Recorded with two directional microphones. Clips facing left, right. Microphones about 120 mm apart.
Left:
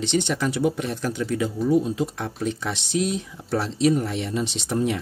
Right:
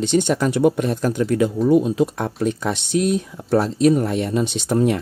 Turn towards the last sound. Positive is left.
turn(degrees=-55)  # may be behind; listen again after turning